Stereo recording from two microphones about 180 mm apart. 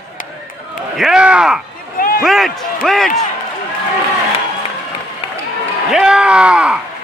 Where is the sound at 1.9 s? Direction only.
55° left (ahead or behind).